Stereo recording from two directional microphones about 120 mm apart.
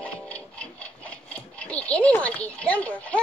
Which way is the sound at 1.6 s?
10° left (ahead or behind).